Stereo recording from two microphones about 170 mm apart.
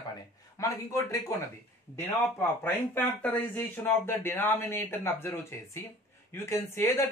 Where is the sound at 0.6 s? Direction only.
20° left (ahead or behind).